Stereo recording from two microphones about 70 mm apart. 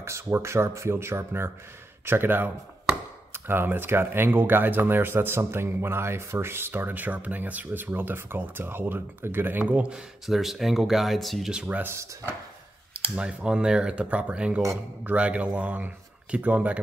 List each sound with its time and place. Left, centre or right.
0.0 s speech: right
9.9 s speech: centre
11.5 s speech: centre
11.8 s speech: right
13.1 s speech: centre